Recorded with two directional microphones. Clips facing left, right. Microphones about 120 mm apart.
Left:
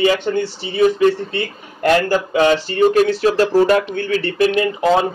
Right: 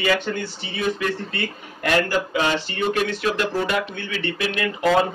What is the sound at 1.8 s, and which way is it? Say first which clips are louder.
Speech: left 6 dB; 40° left (ahead or behind).